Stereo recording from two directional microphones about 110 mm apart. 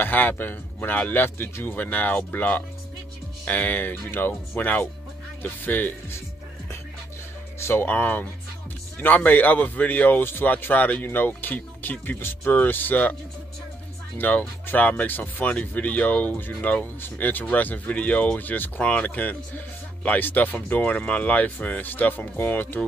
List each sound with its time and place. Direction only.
0.0 s speech: 15° left (ahead or behind)
7.5 s speech: 25° left (ahead or behind)
14.1 s speech: 15° left (ahead or behind)